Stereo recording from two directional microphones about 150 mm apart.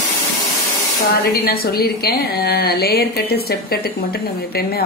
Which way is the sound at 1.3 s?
90° left.